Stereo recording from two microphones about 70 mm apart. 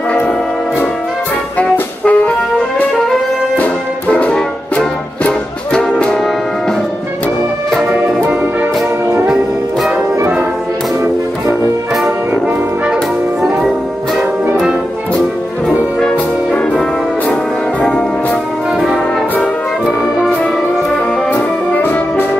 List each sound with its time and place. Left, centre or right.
1.6 s music: centre
4.1 s music: centre
7.7 s music: centre
9.3 s music: centre
14.6 s music: centre
17.8 s music: centre
21.3 s music: left